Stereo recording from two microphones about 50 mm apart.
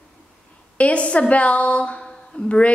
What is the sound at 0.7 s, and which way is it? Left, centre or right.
A woman's voice, left.